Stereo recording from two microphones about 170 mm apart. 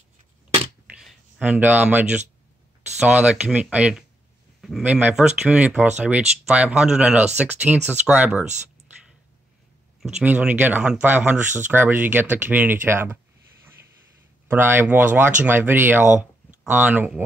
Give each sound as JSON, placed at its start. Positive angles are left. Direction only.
{"t": 0.8, "sound": "a sound", "side_deg": -5}
{"t": 3.0, "sound": "speech", "side_deg": -5}
{"t": 10.0, "sound": "speech", "side_deg": -5}
{"t": 14.5, "sound": "speech", "side_deg": -10}